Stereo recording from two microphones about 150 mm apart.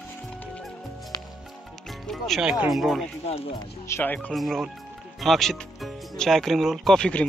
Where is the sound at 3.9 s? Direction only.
15° left (ahead or behind).